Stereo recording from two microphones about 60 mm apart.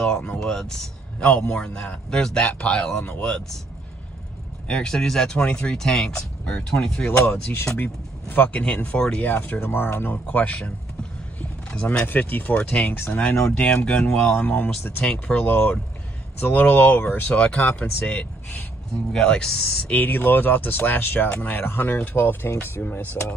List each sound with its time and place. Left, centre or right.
0.0 s speech: centre
4.6 s speech: centre
7.2 s speech: left
7.7 s speech: left
10.1 s speech: left
11.7 s speech: centre
12.1 s speech: left
17.3 s speech: centre
19.2 s speech: centre
19.9 s speech: left